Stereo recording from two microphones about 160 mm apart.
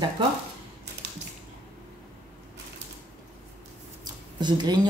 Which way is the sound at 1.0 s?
90° right.